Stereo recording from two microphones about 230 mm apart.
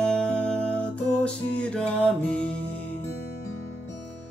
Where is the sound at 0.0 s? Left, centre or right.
Centre.